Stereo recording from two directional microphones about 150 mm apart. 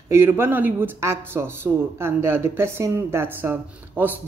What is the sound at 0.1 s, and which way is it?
Speech, 15° right (ahead or behind).